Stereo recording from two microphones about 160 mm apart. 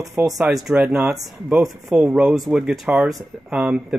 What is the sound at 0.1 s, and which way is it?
Speech, centre (ahead or behind).